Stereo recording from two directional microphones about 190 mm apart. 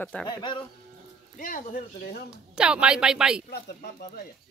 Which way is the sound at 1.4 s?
45° left (ahead or behind).